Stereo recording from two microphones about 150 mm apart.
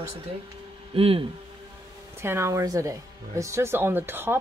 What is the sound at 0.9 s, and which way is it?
Speech, 40° right (ahead or behind).